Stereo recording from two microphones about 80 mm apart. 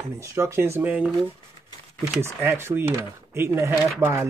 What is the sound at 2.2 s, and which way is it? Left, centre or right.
Speech, right.